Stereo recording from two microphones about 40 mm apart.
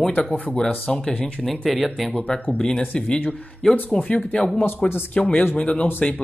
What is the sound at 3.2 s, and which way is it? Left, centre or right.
Speech, centre.